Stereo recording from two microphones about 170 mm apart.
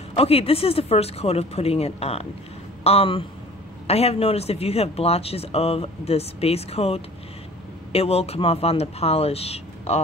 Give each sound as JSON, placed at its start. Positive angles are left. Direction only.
{"t": 0.2, "sound": "speech", "side_deg": 35}